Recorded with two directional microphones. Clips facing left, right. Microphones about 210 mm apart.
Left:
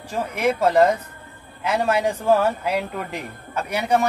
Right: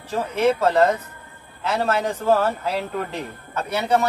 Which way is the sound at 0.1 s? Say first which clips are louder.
Right 2 dB; 15° left (ahead or behind).